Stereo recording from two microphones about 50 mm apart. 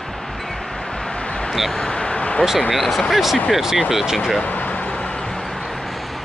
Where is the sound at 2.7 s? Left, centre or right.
Centre.